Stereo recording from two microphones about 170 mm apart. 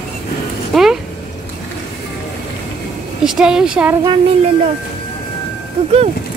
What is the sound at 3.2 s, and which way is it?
Speech, 5° right (ahead or behind).